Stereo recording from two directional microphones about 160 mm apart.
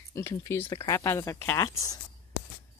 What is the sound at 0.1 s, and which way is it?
Speech, 20° left (ahead or behind).